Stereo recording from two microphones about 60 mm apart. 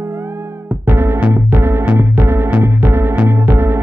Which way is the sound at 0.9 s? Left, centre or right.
Right.